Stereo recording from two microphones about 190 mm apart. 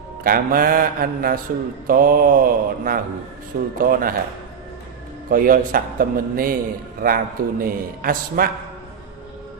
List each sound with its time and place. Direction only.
0.2 s a man's voice: 50° right (ahead or behind)
5.3 s a man's voice: 45° right (ahead or behind)